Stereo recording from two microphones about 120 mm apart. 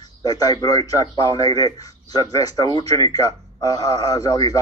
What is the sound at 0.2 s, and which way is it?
A man's voice, 35° left (ahead or behind).